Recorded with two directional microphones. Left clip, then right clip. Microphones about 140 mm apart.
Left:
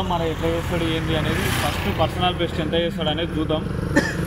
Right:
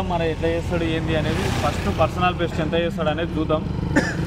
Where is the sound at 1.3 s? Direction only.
45° right (ahead or behind).